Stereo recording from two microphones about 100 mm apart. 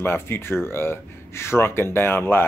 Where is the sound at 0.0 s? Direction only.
25° left (ahead or behind).